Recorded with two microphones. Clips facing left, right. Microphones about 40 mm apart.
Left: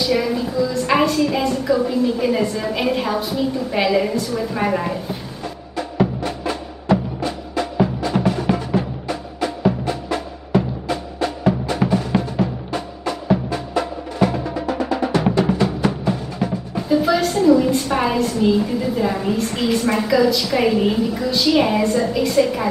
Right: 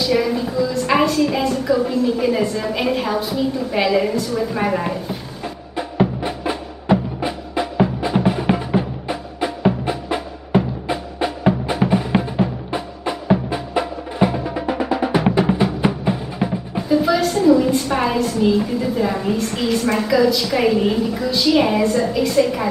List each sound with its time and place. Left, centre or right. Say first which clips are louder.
0.0 s a woman's voice: right 1 dB; centre
5.8 s music: right 1 dB; centre
16.9 s a woman's voice: even; centre